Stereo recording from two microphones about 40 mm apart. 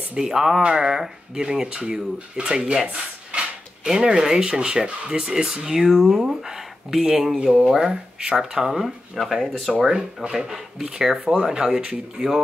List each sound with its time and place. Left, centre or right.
0.1 s speech: centre
2.6 s speech: centre
9.8 s speech: centre